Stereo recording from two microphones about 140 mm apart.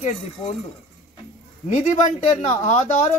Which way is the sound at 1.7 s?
55° left (ahead or behind).